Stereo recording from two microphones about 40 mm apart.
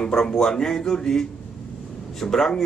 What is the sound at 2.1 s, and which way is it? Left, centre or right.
Speech, centre.